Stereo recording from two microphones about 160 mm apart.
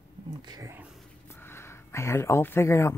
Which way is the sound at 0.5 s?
20° right (ahead or behind).